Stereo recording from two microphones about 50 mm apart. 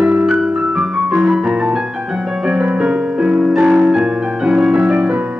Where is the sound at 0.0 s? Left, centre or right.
Right.